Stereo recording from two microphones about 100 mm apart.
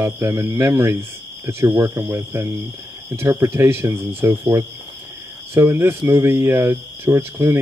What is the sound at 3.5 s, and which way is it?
Speech, 25° right (ahead or behind).